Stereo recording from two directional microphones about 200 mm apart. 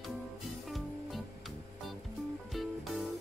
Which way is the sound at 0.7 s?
Centre (ahead or behind).